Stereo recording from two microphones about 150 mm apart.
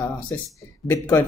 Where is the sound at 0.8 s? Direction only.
15° left (ahead or behind).